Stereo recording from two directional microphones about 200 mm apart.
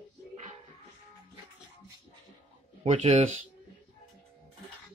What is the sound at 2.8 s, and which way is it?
Speech, 30° right (ahead or behind).